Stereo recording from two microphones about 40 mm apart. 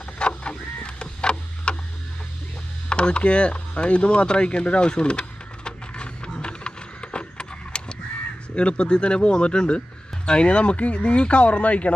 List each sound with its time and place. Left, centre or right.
0.2 s printer: left
2.9 s a sound: left
8.5 s a man's voice: left